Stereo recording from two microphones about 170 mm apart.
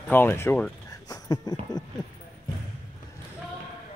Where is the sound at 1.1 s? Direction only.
20° left (ahead or behind).